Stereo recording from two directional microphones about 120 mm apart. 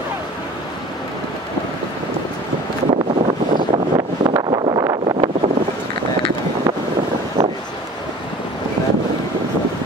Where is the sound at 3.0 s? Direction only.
45° right (ahead or behind).